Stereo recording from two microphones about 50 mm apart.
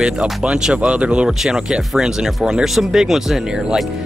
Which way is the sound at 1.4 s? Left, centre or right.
Centre.